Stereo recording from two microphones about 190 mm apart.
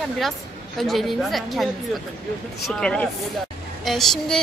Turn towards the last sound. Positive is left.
turn(degrees=0)  # may be behind; listen again after turning